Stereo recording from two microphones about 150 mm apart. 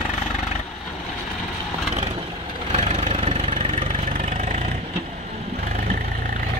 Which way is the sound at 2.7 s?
50° right (ahead or behind).